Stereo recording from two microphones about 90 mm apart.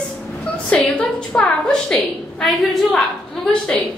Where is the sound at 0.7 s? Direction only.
15° left (ahead or behind).